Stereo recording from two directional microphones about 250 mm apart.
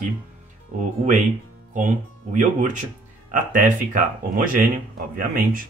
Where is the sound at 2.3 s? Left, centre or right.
Right.